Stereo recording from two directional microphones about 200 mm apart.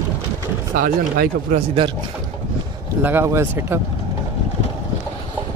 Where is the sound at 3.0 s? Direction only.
10° right (ahead or behind).